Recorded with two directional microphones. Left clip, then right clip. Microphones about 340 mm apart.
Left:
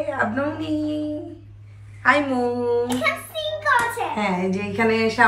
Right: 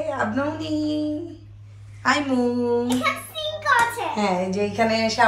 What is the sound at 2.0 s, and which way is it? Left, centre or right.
A child's voice, centre.